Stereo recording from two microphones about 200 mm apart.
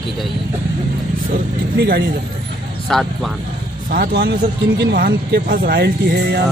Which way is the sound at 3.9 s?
55° right (ahead or behind).